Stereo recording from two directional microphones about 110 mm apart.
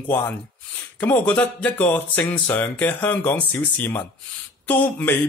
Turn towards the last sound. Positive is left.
turn(degrees=15)  # may be behind; listen again after turning